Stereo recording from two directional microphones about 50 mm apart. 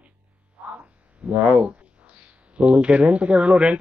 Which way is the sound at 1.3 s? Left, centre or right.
Right.